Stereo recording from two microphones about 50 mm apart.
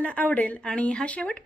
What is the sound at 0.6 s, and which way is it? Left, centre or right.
Speech, centre.